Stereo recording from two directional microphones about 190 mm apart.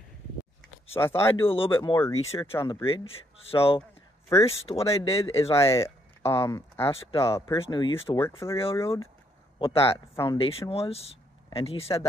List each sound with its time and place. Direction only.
0.9 s speech: 15° left (ahead or behind)
2.8 s speech: 30° left (ahead or behind)
5.6 s speech: 15° left (ahead or behind)
7.5 s speech: 25° left (ahead or behind)
8.2 s speech: 15° left (ahead or behind)
9.6 s speech: 30° left (ahead or behind)